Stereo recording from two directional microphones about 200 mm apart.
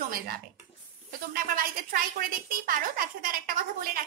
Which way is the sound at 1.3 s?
45° right (ahead or behind).